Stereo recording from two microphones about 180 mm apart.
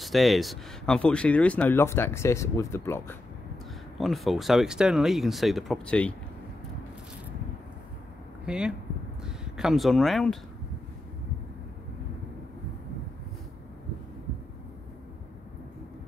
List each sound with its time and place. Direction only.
0.0 s speech: centre (ahead or behind)
4.0 s speech: centre (ahead or behind)
8.5 s speech: 5° right (ahead or behind)